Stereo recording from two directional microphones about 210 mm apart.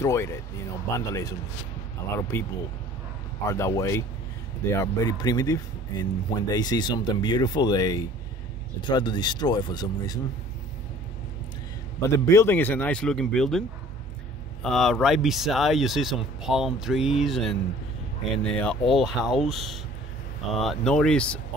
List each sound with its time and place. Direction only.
0.0 s speech: 15° left (ahead or behind)
2.3 s speech: 10° left (ahead or behind)
12.1 s speech: 15° left (ahead or behind)